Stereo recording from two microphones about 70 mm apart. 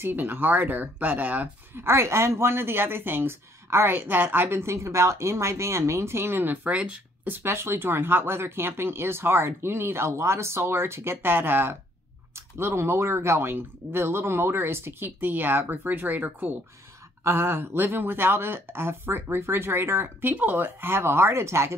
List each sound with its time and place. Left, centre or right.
0.0 s speech: right
1.8 s a woman's voice: right; by 7.3 s centre
7.3 s a woman's voice: right
17.2 s a woman's voice: right